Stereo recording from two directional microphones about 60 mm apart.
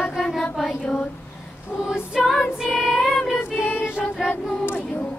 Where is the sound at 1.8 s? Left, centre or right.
Centre.